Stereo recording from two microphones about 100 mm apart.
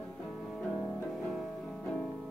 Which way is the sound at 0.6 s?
10° left (ahead or behind).